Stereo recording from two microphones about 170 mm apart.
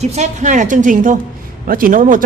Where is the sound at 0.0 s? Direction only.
40° right (ahead or behind).